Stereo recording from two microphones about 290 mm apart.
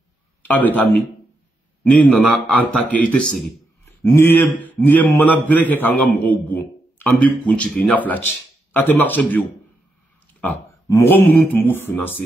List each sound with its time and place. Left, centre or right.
0.4 s speech: centre
10.4 s a man's voice: centre